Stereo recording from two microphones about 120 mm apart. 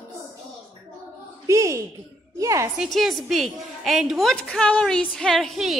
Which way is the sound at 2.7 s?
5° right (ahead or behind).